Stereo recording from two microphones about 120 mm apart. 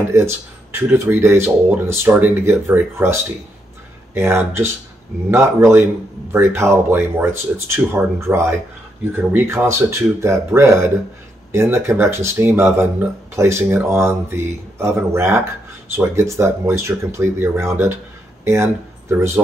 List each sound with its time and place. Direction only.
0.1 s speech: 20° right (ahead or behind)